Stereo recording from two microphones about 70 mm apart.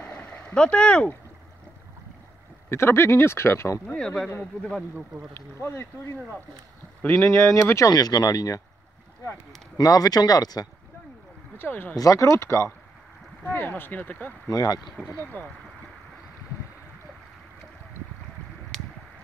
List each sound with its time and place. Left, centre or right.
0.0 s vehicle: left
2.7 s speech: left
4.0 s speech: centre
5.3 s speech: left
7.2 s speech: left
9.8 s speech: left
11.5 s speech: left
12.0 s speech: left
13.4 s speech: left
14.5 s speech: left
15.3 s speech: left
18.7 s a sound: centre